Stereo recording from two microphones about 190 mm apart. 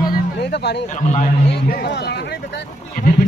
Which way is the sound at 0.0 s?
60° left (ahead or behind).